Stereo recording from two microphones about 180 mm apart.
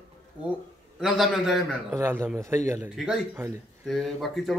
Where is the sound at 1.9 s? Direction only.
15° right (ahead or behind).